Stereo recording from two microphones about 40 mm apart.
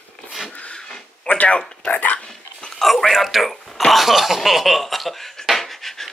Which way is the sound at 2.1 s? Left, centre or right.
Centre.